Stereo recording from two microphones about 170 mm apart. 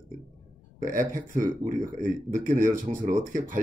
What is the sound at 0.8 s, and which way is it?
Speech, 50° right (ahead or behind).